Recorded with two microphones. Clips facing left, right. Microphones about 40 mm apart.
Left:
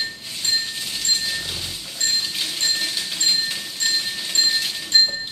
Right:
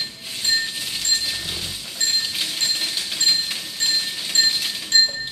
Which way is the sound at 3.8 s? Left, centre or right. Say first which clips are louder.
Even; centre.